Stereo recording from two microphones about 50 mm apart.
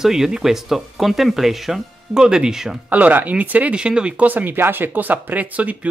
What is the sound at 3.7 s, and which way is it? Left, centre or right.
Speech, right.